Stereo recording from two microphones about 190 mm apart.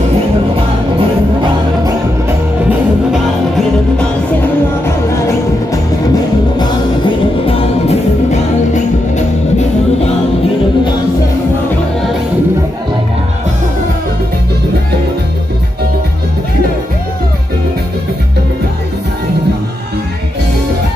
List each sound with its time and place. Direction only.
7.4 s music: 35° left (ahead or behind)